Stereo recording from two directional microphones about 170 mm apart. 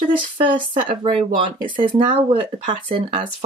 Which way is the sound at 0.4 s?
30° right (ahead or behind).